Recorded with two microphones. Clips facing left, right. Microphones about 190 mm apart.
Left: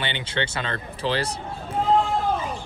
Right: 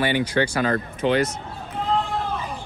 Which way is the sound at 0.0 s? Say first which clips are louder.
Right 7 dB; 25° left (ahead or behind).